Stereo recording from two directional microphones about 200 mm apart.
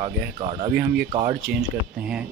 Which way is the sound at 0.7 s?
55° right (ahead or behind).